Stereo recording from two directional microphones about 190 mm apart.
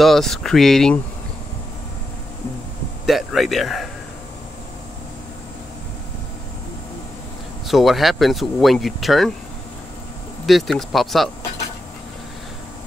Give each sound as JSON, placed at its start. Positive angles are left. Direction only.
{"t": 0.0, "sound": "speech", "side_deg": 0}
{"t": 3.1, "sound": "speech", "side_deg": 0}
{"t": 7.6, "sound": "speech", "side_deg": 0}
{"t": 10.4, "sound": "speech", "side_deg": 0}